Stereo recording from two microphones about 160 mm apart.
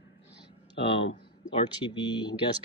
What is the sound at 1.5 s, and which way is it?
Speech, 30° left (ahead or behind).